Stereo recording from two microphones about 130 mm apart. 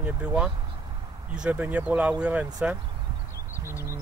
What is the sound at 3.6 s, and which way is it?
Bird, 20° left (ahead or behind).